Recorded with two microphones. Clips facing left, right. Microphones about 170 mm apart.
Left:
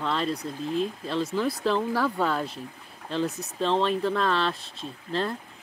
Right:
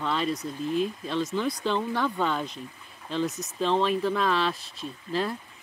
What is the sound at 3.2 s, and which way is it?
Speech, 60° left (ahead or behind).